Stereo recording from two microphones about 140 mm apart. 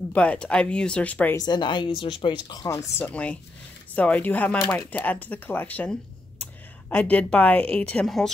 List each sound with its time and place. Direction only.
0.1 s speech: 10° left (ahead or behind)
1.3 s speech: 30° left (ahead or behind); by 8.3 s 5° left (ahead or behind)